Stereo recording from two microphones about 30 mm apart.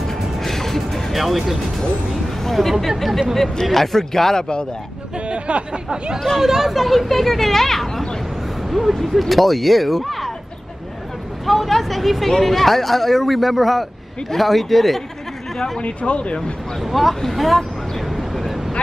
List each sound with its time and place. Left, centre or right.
0.0 s music: centre
1.1 s speech: centre
2.4 s speech: centre
4.4 s speech: left
5.3 s speech: right
6.4 s speech: centre
6.8 s speech: centre
8.6 s speech: centre
11.4 s speech: centre
15.8 s speech: left
16.8 s speech: centre
18.0 s vehicle: centre